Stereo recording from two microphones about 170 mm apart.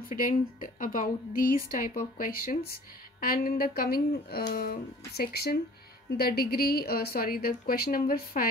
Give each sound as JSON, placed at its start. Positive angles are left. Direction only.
{"t": 0.1, "sound": "a woman's voice", "side_deg": 55}